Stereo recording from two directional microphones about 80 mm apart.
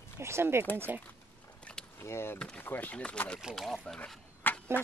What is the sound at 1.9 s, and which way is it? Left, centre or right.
Speech, left.